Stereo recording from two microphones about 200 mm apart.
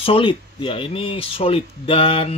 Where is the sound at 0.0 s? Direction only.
25° left (ahead or behind).